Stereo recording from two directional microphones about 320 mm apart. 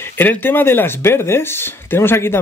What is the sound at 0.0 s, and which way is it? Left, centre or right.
Speech, centre.